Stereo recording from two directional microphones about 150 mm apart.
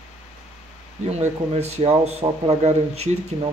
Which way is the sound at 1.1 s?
45° right (ahead or behind).